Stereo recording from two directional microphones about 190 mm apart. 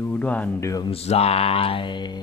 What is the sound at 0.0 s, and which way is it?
Speech, 10° left (ahead or behind).